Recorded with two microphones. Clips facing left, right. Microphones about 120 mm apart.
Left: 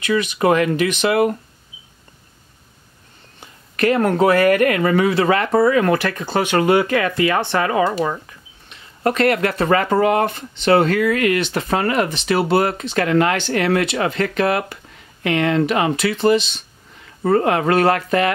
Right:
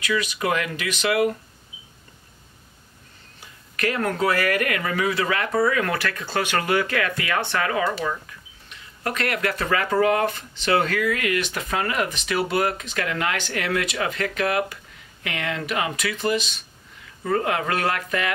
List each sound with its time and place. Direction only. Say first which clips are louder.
0.0 s speech: left 7 dB; 30° left (ahead or behind)
3.7 s speech: left 8 dB; 30° left (ahead or behind)
17.3 s speech: left 7 dB; 40° left (ahead or behind)